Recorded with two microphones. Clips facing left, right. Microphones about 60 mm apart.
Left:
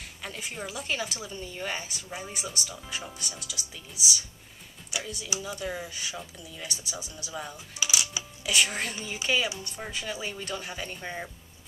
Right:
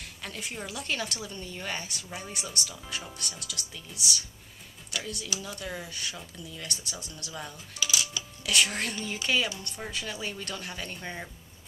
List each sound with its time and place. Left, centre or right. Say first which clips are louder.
0.0 s a woman's voice: left 1 dB; centre
7.8 s music: even; centre
8.5 s a woman's voice: even; centre